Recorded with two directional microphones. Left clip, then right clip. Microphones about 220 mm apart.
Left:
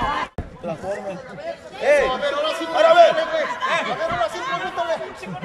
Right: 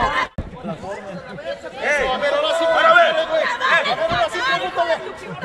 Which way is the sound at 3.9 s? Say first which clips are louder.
Right 3 dB; 50° right (ahead or behind).